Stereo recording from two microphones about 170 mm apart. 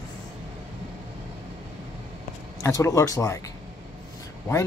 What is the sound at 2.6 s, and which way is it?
Speech, 20° left (ahead or behind).